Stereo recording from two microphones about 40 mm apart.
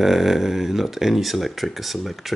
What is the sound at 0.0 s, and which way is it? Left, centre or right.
Speech, centre.